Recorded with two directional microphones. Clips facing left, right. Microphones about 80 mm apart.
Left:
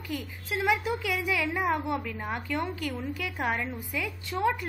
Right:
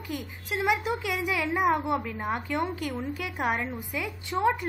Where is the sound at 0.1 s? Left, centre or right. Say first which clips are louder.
Even; right.